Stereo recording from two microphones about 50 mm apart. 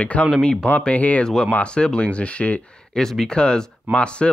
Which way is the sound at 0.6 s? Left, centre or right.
Left.